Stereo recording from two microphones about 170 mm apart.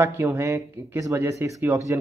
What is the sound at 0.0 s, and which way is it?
A man's voice, 15° right (ahead or behind).